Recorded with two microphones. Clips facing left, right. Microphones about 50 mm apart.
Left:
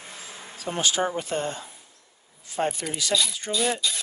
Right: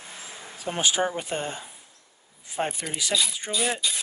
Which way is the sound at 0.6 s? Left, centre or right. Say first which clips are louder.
Even; right.